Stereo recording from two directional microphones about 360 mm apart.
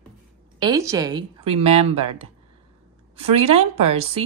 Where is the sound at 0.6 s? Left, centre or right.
Centre.